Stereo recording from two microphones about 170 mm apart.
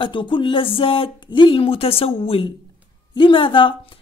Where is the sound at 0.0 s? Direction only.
30° left (ahead or behind).